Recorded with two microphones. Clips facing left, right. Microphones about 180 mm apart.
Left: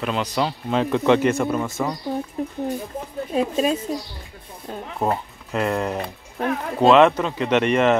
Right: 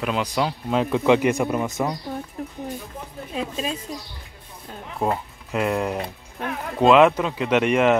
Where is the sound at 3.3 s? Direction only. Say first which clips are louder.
Left 7 dB; 40° left (ahead or behind).